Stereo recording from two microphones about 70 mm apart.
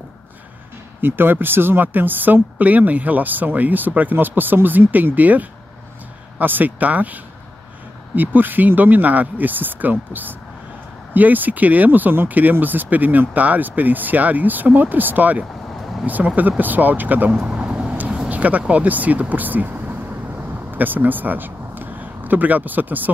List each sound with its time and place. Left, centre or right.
1.0 s speech: right
8.2 s speech: right
17.4 s vehicle: centre
18.3 s speech: right